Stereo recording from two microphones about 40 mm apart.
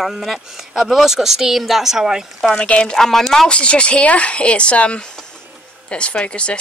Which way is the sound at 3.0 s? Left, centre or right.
Centre.